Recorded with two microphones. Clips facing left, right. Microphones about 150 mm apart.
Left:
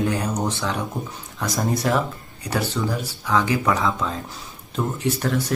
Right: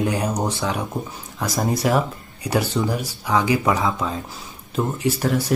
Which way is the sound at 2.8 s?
20° right (ahead or behind).